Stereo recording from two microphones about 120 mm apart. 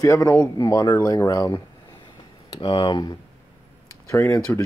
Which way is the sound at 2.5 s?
45° left (ahead or behind).